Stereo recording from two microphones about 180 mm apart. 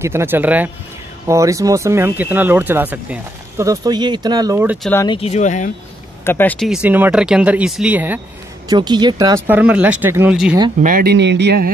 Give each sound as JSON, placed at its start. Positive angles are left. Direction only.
{"t": 0.0, "sound": "speech", "side_deg": -15}
{"t": 4.9, "sound": "speech", "side_deg": 25}
{"t": 5.2, "sound": "speech", "side_deg": 40}
{"t": 6.2, "sound": "speech", "side_deg": 10}
{"t": 6.7, "sound": "speech", "side_deg": -10}
{"t": 8.6, "sound": "speech", "side_deg": -25}
{"t": 10.8, "sound": "speech", "side_deg": -50}